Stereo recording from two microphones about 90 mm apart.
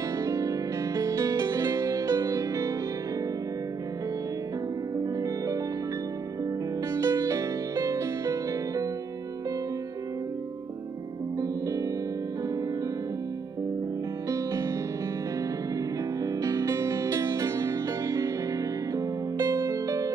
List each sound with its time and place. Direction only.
0.2 s music: 35° right (ahead or behind)
6.9 s music: 40° right (ahead or behind)
14.3 s music: 35° right (ahead or behind)
16.2 s music: 35° right (ahead or behind)